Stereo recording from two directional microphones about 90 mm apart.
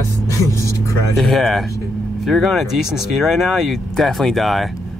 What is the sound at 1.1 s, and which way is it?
Speech, centre (ahead or behind).